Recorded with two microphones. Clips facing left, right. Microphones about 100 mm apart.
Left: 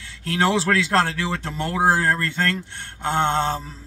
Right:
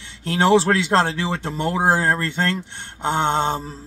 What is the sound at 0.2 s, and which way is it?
Speech, 25° right (ahead or behind).